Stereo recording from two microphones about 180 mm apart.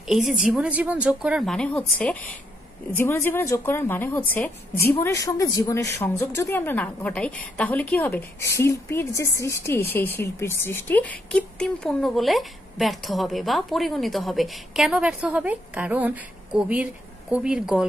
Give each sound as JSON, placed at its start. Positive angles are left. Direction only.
{"t": 0.1, "sound": "a woman's voice", "side_deg": -5}